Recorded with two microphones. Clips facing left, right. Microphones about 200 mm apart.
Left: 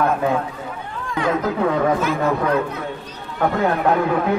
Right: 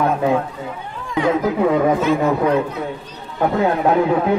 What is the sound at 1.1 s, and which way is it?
Speech, 20° right (ahead or behind).